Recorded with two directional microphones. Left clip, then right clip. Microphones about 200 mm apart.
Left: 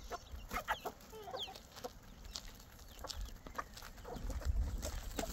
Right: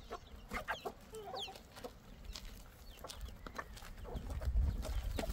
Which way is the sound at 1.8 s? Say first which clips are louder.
Left 2 dB; 25° right (ahead or behind).